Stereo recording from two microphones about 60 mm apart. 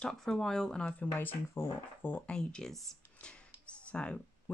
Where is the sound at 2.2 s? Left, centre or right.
Centre.